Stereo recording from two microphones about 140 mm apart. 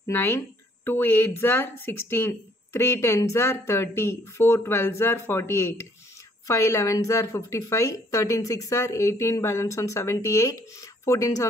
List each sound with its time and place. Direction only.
0.0 s a woman's voice: 15° left (ahead or behind)